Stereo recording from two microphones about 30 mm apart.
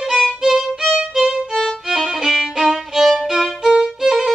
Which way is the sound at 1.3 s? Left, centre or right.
Centre.